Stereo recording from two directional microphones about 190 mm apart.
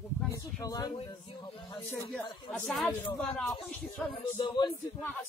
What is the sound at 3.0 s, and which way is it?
Speech, 25° left (ahead or behind).